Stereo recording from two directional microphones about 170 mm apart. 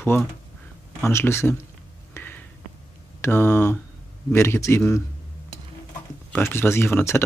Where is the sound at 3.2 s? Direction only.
15° left (ahead or behind).